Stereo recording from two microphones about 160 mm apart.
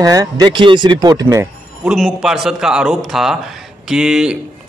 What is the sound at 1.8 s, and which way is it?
A man's voice, centre (ahead or behind).